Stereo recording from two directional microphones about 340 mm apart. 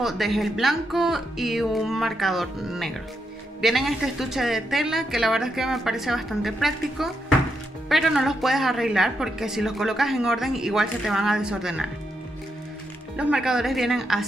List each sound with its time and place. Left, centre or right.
0.0 s a woman's voice: centre
13.1 s a woman's voice: centre